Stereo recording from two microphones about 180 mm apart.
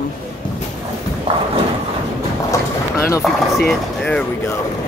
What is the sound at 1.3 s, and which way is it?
Clip-clop, 35° right (ahead or behind).